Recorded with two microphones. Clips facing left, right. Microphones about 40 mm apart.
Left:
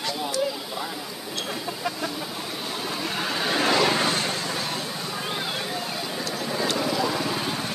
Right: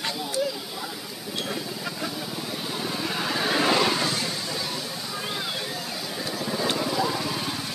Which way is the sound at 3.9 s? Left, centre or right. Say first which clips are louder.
Left 3 dB; left.